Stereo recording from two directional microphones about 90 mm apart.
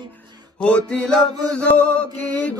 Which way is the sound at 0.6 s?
10° left (ahead or behind).